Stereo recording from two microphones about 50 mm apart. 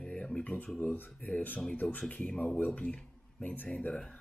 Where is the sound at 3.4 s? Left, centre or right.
Left.